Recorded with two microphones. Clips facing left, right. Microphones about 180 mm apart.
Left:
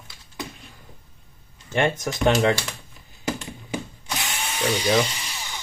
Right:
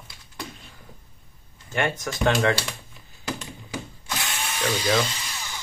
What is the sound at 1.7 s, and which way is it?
Speech, 20° left (ahead or behind).